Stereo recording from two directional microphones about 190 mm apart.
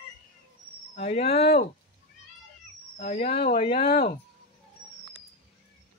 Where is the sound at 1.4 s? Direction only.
55° left (ahead or behind).